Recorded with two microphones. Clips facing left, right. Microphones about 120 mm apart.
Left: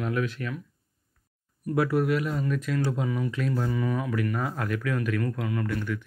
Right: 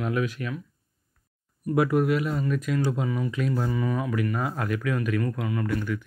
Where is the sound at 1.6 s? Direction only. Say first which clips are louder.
Right 2 dB; 15° right (ahead or behind).